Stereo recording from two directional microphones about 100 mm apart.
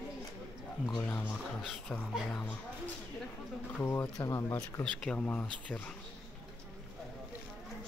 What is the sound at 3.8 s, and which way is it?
Speech, 25° left (ahead or behind).